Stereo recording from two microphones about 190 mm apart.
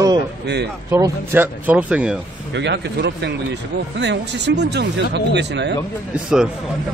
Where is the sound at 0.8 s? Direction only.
15° right (ahead or behind).